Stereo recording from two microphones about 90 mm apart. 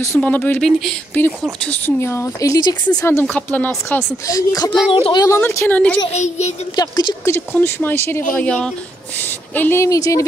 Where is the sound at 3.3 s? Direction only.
20° left (ahead or behind).